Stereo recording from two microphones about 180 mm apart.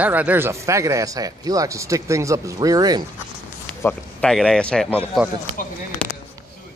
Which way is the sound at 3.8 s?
5° left (ahead or behind).